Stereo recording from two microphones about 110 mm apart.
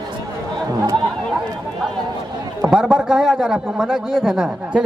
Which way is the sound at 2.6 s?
5° right (ahead or behind).